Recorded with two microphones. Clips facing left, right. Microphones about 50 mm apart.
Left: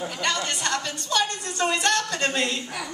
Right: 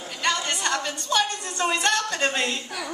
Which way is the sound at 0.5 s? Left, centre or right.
Right.